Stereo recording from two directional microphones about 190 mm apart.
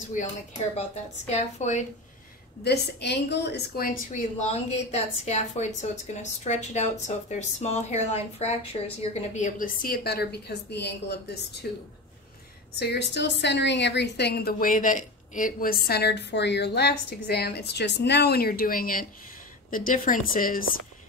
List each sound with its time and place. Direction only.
0.2 s a woman's voice: 40° left (ahead or behind)
2.6 s a woman's voice: 60° left (ahead or behind)